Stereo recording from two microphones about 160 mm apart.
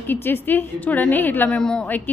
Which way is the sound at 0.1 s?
10° left (ahead or behind).